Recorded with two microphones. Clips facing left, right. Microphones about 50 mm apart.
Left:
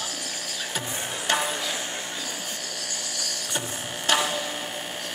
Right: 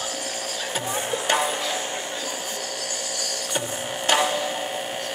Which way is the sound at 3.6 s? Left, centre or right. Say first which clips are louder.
Right 5 dB; centre.